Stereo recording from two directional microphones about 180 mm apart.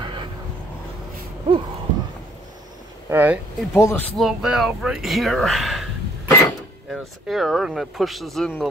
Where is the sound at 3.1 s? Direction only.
10° right (ahead or behind).